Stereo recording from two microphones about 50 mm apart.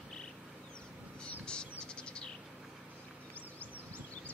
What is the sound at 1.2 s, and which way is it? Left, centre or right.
Cricket, centre.